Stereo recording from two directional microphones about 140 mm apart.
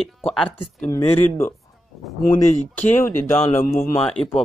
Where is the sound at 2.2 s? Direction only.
75° left (ahead or behind).